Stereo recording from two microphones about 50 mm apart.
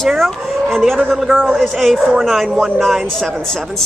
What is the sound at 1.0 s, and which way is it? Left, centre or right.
Speech, centre.